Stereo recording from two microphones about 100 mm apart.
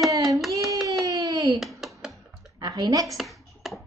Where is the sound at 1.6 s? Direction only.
Centre (ahead or behind).